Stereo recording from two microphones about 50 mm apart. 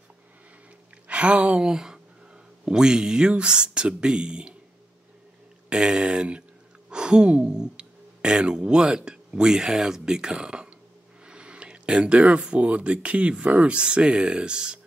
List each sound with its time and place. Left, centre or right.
1.0 s speech: right
1.7 s speech: centre
5.7 s speech: centre